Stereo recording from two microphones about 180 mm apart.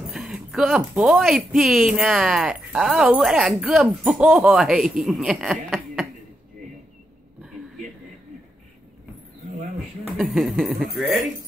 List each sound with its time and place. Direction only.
0.0 s speech: centre (ahead or behind)
10.1 s speech: centre (ahead or behind)